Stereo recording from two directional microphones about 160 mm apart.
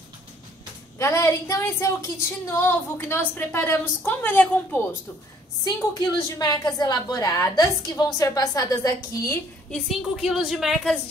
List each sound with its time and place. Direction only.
0.9 s a woman's voice: 15° left (ahead or behind)
5.6 s a woman's voice: 20° left (ahead or behind)
9.7 s a woman's voice: centre (ahead or behind)